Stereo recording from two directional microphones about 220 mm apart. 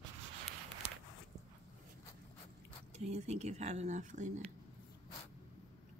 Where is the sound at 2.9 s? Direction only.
30° right (ahead or behind).